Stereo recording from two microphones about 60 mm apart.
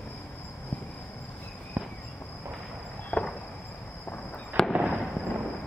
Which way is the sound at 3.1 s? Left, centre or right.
Centre.